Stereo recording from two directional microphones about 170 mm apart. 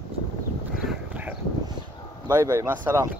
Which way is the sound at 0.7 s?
10° right (ahead or behind).